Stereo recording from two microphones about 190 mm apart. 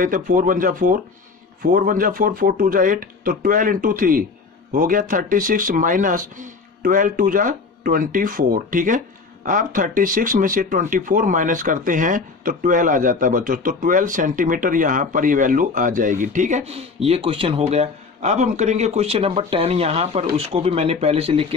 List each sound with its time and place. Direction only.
0.0 s speech: 45° right (ahead or behind); by 21.5 s 30° right (ahead or behind)